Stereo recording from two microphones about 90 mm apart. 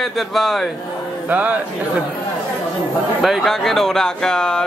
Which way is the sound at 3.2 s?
Centre (ahead or behind).